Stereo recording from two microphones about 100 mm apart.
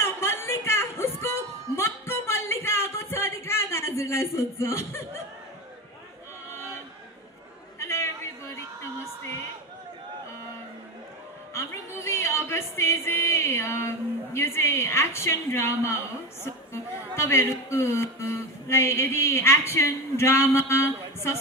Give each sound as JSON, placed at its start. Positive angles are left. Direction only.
{"t": 0.0, "sound": "a sound", "side_deg": 25}
{"t": 7.8, "sound": "chatter", "side_deg": 25}
{"t": 11.5, "sound": "music", "side_deg": 25}
{"t": 16.7, "sound": "speech", "side_deg": 25}